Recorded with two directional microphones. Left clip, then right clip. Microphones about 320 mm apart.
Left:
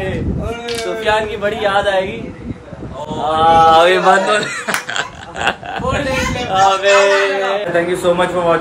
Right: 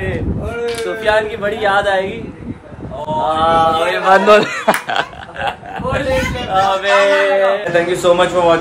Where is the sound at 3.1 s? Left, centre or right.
Centre.